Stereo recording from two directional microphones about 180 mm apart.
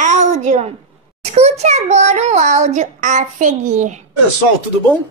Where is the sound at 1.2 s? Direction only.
40° right (ahead or behind).